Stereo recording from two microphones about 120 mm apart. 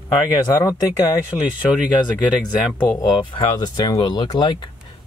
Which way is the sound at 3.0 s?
35° left (ahead or behind).